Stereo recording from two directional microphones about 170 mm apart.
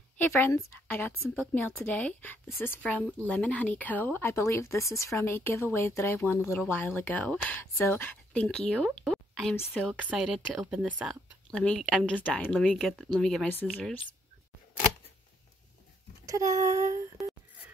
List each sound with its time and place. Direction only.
0.2 s a woman's voice: 10° left (ahead or behind)
9.9 s a woman's voice: 5° right (ahead or behind)
11.5 s a woman's voice: 5° left (ahead or behind)
16.3 s speech: 20° right (ahead or behind)